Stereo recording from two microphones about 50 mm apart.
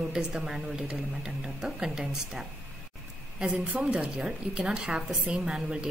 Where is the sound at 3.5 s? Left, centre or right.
Right.